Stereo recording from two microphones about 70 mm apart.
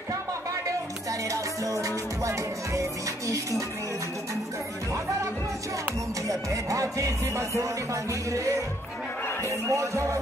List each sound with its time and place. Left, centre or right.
1.3 s music: right
6.2 s music: right